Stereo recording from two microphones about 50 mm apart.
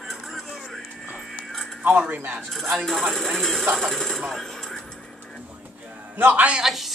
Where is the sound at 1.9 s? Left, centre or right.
Right.